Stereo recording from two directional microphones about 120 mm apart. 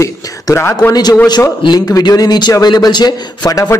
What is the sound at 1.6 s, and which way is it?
A man's voice, 35° left (ahead or behind).